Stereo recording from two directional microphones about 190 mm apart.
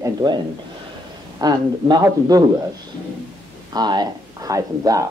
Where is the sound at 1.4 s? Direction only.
20° right (ahead or behind).